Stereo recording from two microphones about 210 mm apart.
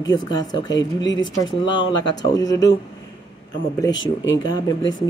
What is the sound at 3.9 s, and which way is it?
Speech, 65° left (ahead or behind).